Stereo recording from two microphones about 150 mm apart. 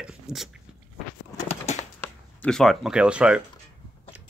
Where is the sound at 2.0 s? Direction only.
5° left (ahead or behind).